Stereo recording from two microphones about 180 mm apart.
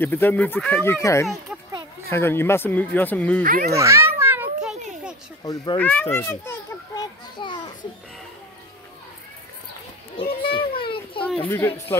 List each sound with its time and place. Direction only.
0.0 s speech: 10° left (ahead or behind)
3.4 s a child's voice: 50° right (ahead or behind)
3.7 s children playing: 15° right (ahead or behind)
5.4 s a child's voice: 20° left (ahead or behind)
7.3 s children playing: 25° left (ahead or behind)
10.5 s children playing: 30° left (ahead or behind)
11.4 s speech: 15° left (ahead or behind)